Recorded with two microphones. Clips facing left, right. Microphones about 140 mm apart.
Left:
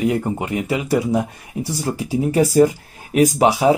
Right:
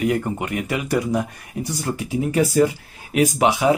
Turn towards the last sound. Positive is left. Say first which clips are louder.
# left 3 dB
turn(degrees=35)  # may be behind; listen again after turning